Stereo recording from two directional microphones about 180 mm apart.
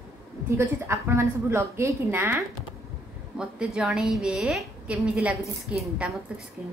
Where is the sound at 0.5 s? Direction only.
15° right (ahead or behind).